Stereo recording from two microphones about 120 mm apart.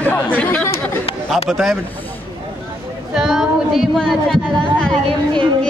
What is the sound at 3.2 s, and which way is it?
Speech, centre (ahead or behind).